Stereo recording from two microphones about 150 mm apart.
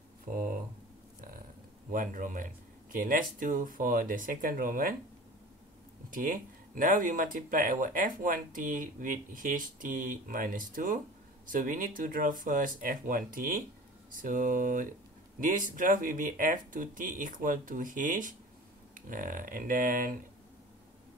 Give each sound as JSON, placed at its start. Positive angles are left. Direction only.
{"t": 0.3, "sound": "a sound", "side_deg": -65}
{"t": 1.9, "sound": "speech", "side_deg": -65}
{"t": 6.0, "sound": "speech", "side_deg": -65}